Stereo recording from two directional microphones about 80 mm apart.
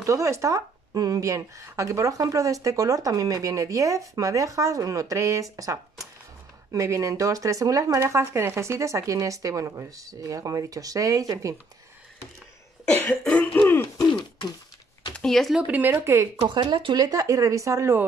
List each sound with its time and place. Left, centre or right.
0.0 s a woman's voice: right
12.8 s cough: centre
15.1 s speech: centre
15.6 s speech: right
16.4 s a woman's voice: right